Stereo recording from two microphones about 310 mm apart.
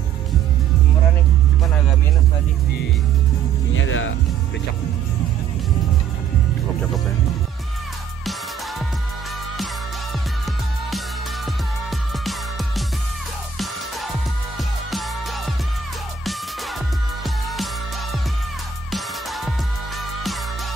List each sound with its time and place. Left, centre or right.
3.7 s music: left
14.9 s music: centre
18.9 s music: centre